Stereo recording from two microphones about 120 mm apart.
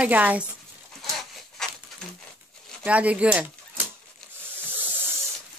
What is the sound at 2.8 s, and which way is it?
Speech, 10° right (ahead or behind).